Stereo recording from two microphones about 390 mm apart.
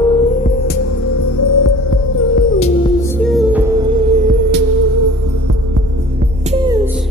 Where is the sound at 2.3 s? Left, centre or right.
Centre.